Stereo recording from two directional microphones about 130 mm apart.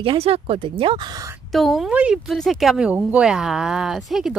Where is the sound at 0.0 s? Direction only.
45° right (ahead or behind).